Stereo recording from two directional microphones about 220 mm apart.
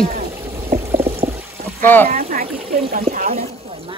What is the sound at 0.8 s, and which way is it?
Pour, 10° right (ahead or behind).